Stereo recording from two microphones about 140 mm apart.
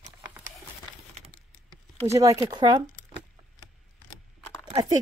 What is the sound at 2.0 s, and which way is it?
Speech, 25° right (ahead or behind).